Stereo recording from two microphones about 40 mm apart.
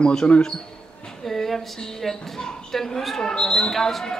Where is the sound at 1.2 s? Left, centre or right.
Centre.